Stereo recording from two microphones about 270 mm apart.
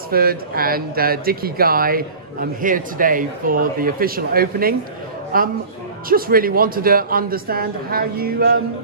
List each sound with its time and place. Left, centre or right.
0.1 s a man's voice: right